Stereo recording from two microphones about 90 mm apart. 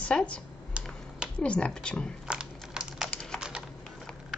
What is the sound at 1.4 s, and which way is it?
Speech, 10° left (ahead or behind).